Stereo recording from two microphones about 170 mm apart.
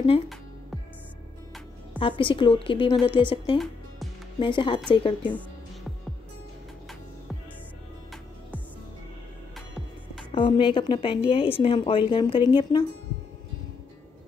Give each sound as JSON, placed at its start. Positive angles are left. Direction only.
{"t": 2.0, "sound": "a woman's voice", "side_deg": 30}
{"t": 10.3, "sound": "a woman's voice", "side_deg": 30}